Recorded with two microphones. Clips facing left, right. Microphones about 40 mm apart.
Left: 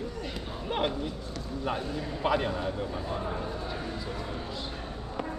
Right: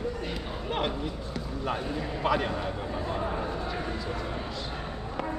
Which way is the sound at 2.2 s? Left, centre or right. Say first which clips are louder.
Even; centre.